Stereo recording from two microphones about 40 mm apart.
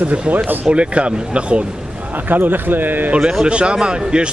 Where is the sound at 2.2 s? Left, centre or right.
Right.